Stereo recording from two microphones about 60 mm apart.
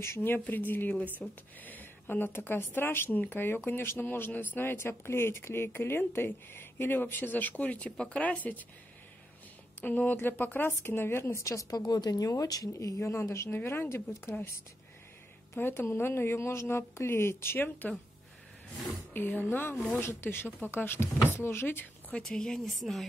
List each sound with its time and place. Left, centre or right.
0.0 s speech: left
1.2 s speech: centre
1.6 s speech: left
9.8 s a woman's voice: left
15.5 s a woman's voice: left
17.8 s speech: left
19.1 s a woman's voice: left
22.1 s speech: centre